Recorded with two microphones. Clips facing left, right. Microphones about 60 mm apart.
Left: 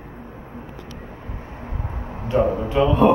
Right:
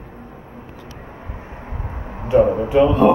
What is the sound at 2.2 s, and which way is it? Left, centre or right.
Speech, centre.